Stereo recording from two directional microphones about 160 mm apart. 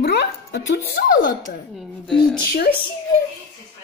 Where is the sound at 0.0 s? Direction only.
85° left; by 1.3 s 60° left (ahead or behind).